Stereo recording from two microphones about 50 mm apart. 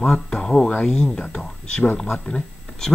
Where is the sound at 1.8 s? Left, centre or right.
Left.